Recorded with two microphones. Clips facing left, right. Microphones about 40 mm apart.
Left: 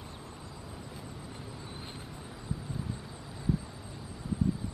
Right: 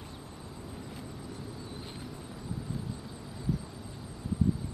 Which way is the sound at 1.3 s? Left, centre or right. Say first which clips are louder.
Right 2 dB; left.